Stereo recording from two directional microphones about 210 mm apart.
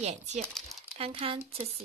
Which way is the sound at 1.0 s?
25° right (ahead or behind).